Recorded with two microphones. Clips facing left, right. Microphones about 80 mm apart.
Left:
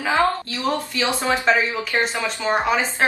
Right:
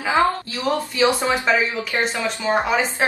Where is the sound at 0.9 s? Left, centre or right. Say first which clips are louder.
Right 3 dB; right.